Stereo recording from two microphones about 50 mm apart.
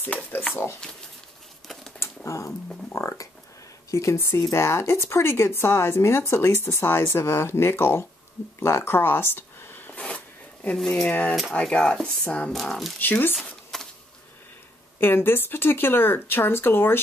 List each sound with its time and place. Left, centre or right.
2.0 s typing: left
2.9 s speech: left
9.9 s zipper: left
10.8 s speech: centre
11.1 s speech: left
11.6 s speech: centre
13.0 s speech: left
13.7 s a sound: centre
15.0 s speech: left